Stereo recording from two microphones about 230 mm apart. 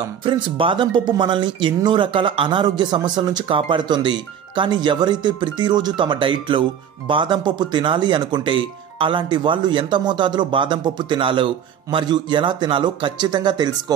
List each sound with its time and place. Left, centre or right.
0.2 s speech: right